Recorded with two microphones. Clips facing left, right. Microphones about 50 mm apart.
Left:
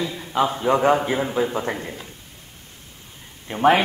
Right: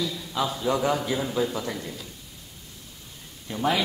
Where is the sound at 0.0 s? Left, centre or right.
Left.